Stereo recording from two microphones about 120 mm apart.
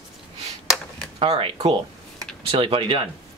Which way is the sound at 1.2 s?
50° right (ahead or behind).